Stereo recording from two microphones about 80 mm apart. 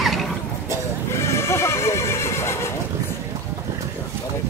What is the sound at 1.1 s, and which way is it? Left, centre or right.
Neigh, left.